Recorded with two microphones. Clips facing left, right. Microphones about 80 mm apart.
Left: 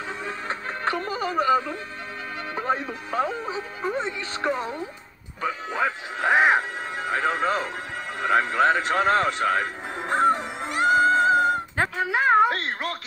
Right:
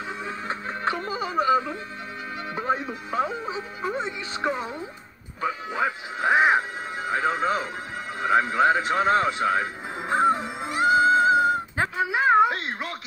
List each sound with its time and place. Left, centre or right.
0.8 s music: centre
3.1 s speech: centre
5.4 s music: centre
8.2 s a sound: centre